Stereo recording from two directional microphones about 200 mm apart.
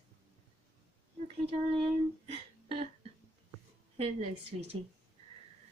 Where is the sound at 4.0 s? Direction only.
30° right (ahead or behind).